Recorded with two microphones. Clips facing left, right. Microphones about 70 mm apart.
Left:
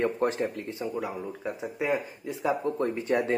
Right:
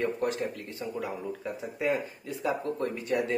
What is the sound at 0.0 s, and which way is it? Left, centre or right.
Speech, left.